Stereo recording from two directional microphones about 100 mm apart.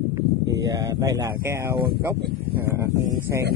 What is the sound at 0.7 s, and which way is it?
Speech, 30° right (ahead or behind).